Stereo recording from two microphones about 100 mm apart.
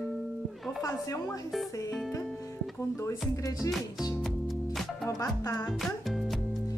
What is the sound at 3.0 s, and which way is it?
Speech, 35° left (ahead or behind).